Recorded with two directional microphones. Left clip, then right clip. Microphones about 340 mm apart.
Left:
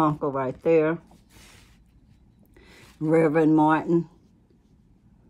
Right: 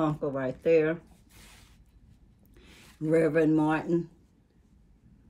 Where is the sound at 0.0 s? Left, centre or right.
Left.